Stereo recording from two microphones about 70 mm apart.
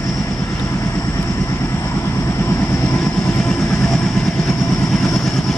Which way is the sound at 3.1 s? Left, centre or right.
Left.